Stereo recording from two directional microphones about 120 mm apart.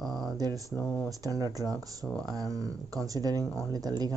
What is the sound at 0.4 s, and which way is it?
Speech, 30° right (ahead or behind).